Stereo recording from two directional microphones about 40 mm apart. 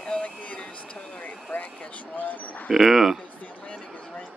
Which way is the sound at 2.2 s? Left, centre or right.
Left.